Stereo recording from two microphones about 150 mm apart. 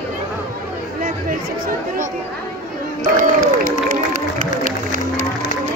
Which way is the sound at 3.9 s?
60° right (ahead or behind).